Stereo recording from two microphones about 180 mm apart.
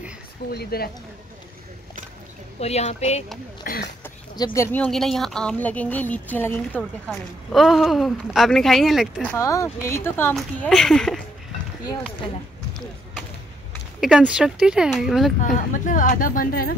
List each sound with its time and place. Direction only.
0.5 s speech: 60° left (ahead or behind)
2.6 s speech: 35° left (ahead or behind)
3.7 s a woman's voice: 50° left (ahead or behind)
4.6 s a woman's voice: 5° left (ahead or behind)
6.8 s a woman's voice: centre (ahead or behind)
10.3 s a woman's voice: centre (ahead or behind)
14.0 s a woman's voice: 5° right (ahead or behind)
15.4 s a woman's voice: 45° left (ahead or behind)